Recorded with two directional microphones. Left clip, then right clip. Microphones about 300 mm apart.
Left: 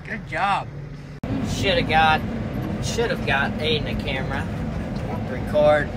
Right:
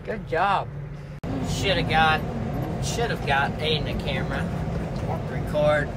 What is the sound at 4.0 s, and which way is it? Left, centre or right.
Speech, centre.